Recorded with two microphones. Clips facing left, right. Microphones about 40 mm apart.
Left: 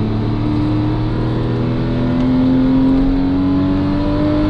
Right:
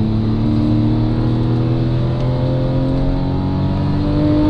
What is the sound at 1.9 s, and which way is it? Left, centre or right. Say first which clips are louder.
Vehicle: left 6 dB; left.